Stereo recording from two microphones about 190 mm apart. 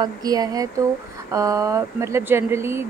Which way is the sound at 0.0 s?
20° right (ahead or behind).